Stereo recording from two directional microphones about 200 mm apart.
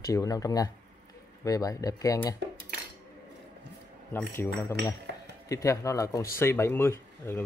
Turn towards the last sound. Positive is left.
turn(degrees=10)  # may be behind; listen again after turning